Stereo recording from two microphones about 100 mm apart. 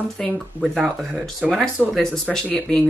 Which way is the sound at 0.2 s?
5° left (ahead or behind).